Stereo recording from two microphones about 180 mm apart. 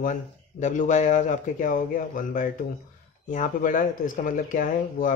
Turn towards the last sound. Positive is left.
turn(degrees=45)  # may be behind; listen again after turning